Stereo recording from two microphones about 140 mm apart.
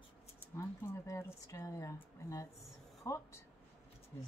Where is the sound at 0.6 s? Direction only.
20° left (ahead or behind).